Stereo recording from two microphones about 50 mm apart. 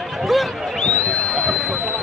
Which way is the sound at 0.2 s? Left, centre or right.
Centre.